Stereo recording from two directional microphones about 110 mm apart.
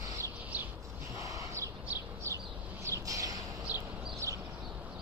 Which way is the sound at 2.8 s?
30° right (ahead or behind).